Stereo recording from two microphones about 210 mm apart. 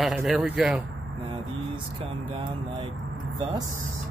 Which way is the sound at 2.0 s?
25° right (ahead or behind).